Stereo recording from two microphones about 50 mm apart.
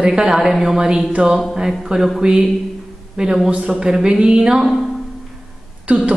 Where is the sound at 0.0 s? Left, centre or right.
Centre.